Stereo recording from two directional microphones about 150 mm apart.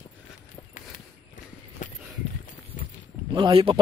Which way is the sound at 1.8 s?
60° left (ahead or behind).